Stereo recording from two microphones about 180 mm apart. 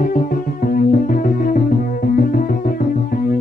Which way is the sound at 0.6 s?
50° left (ahead or behind).